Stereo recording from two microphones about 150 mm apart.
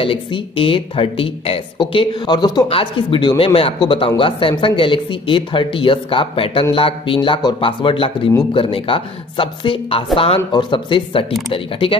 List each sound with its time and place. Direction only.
0.0 s speech: 35° left (ahead or behind)